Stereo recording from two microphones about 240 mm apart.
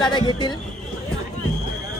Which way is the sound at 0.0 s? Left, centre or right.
Centre.